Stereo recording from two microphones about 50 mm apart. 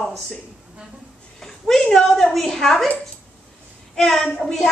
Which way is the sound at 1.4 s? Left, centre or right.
Centre.